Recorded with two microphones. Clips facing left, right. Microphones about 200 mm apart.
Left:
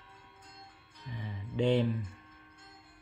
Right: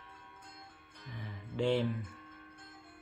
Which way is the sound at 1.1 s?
20° left (ahead or behind).